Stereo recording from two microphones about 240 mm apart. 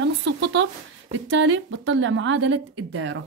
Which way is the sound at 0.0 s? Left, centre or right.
Right.